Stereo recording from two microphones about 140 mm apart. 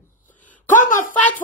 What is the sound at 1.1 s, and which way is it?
Speech, 10° left (ahead or behind).